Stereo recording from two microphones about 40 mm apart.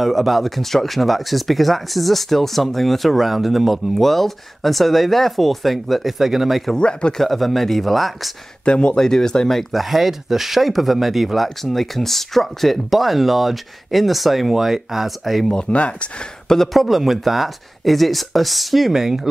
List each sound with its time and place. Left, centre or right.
0.0 s speech: centre
6.8 s speech: left
7.2 s speech: centre
8.6 s speech: left
8.9 s speech: centre
9.7 s speech: centre
15.5 s speech: left
16.7 s speech: centre